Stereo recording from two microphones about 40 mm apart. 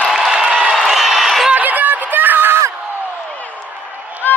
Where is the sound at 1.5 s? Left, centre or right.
Right.